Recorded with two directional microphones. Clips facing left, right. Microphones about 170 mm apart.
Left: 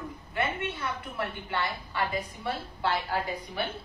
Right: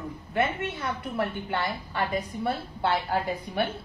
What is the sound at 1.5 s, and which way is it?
A woman's voice, 45° right (ahead or behind).